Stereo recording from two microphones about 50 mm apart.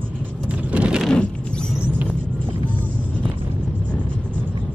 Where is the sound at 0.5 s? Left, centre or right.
Right.